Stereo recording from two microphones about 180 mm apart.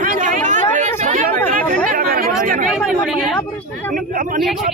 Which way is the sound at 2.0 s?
55° right (ahead or behind).